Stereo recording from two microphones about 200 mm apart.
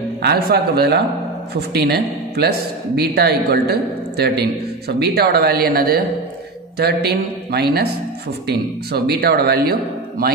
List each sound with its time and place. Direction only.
0.2 s speech: 50° right (ahead or behind)